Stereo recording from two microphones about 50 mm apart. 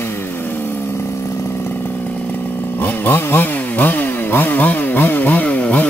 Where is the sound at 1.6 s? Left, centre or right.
Left.